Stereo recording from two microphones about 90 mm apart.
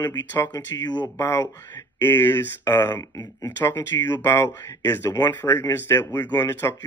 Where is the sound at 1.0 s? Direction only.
35° left (ahead or behind).